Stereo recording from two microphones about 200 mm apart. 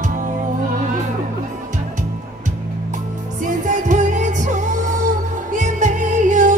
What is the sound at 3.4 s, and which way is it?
Music, 40° right (ahead or behind).